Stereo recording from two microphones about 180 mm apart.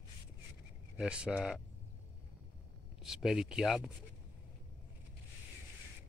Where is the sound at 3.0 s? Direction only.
Centre (ahead or behind).